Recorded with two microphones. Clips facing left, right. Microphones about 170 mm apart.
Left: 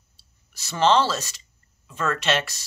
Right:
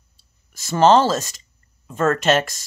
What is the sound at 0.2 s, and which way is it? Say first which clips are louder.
Speech: right 1 dB; 45° right (ahead or behind).